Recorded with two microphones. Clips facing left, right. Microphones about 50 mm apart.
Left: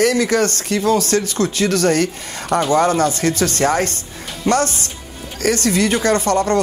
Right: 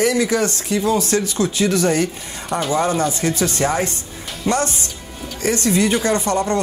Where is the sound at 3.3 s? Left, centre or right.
Left.